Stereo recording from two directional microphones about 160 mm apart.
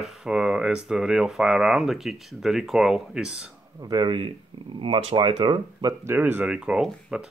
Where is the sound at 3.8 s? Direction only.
25° right (ahead or behind).